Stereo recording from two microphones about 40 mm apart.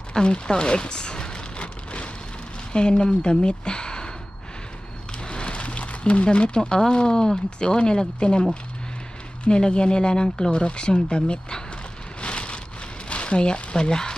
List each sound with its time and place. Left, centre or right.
0.1 s rain: left
2.7 s speech: left
5.2 s speech: left
12.2 s rain: left
13.1 s speech: left